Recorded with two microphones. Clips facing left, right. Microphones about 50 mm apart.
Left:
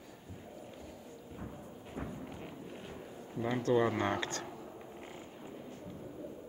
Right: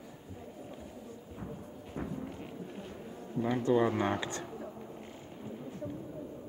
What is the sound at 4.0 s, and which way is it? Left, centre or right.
Speech, centre.